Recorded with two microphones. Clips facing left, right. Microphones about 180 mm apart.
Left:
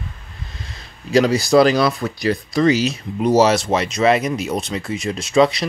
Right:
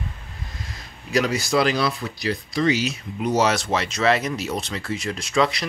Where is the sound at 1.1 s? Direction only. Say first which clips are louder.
Left 7 dB; 35° left (ahead or behind).